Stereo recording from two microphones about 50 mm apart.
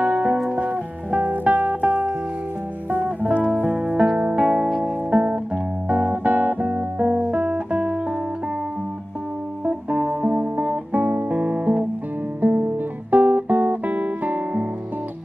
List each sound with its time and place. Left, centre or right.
0.0 s music: right
4.6 s music: centre
5.1 s music: right
9.7 s music: right
12.4 s guitar: right